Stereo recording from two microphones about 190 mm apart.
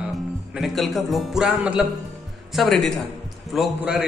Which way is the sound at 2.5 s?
Centre (ahead or behind).